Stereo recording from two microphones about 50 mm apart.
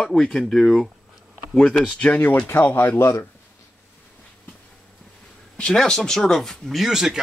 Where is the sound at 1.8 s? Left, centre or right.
Left.